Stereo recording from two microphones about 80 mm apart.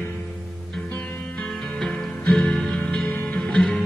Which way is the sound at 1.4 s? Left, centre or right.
Centre.